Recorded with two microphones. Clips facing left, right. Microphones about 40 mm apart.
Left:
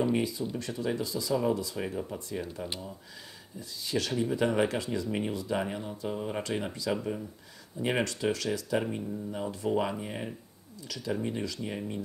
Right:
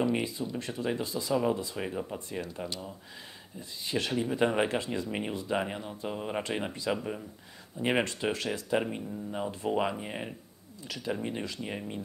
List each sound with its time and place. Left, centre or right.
0.1 s speech: right
1.3 s speech: centre
3.5 s speech: right
5.1 s speech: right
8.0 s speech: right